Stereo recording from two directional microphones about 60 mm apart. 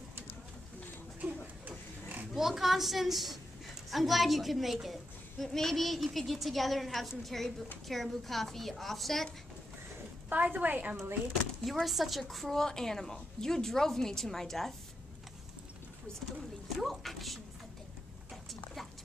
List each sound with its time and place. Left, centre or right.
2.3 s a woman's voice: centre
10.3 s a woman's voice: right
11.6 s a woman's voice: centre
16.6 s a woman's voice: centre
18.3 s dog: centre